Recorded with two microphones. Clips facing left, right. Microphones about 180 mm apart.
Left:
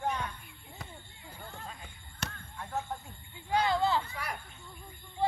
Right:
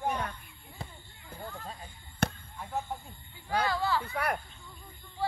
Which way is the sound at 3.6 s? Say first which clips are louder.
Left 2 dB; 20° left (ahead or behind).